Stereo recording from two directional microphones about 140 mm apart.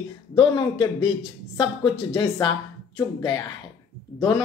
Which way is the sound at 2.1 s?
25° left (ahead or behind).